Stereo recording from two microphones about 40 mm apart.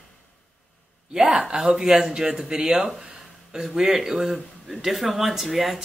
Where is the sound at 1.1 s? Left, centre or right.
Centre.